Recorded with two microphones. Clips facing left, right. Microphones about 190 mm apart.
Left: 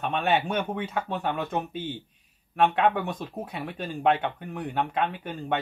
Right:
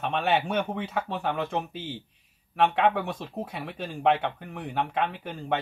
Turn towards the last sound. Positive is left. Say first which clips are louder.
# even
turn(degrees=0)  # may be behind; listen again after turning